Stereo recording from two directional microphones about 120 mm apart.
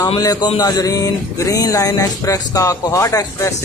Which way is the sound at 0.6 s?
30° left (ahead or behind).